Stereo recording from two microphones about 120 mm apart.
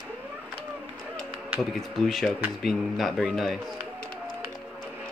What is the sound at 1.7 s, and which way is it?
Speech, centre (ahead or behind).